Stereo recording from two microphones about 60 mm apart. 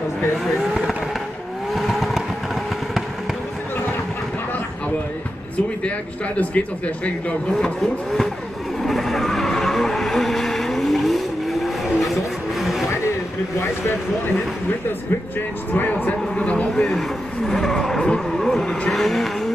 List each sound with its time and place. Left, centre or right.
0.6 s fireworks: centre
1.8 s vehicle: centre
5.9 s speech: left
7.5 s speech: centre
8.8 s vehicle: centre
13.6 s speech: left
15.7 s a man's voice: left
16.7 s speech: centre
17.5 s vehicle: centre
18.4 s speech: centre